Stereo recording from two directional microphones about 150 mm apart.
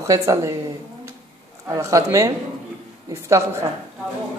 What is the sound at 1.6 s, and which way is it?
A woman's voice, 20° right (ahead or behind).